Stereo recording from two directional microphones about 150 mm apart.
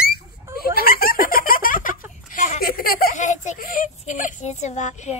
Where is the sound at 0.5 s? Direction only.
90° left; by 1.9 s 65° left (ahead or behind).